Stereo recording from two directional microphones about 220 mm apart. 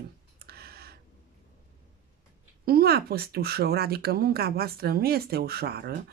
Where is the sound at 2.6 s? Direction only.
45° right (ahead or behind).